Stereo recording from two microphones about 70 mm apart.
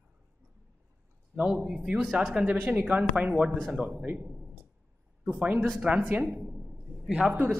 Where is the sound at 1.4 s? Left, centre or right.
Centre.